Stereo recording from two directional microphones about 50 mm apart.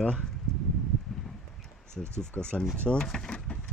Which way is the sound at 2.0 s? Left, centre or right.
Centre.